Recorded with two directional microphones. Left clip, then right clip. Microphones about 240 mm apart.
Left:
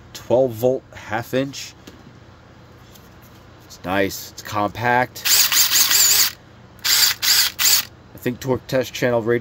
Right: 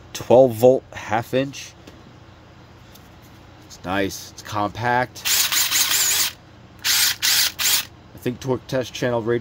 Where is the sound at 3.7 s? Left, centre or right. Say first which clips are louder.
Left 3 dB; centre.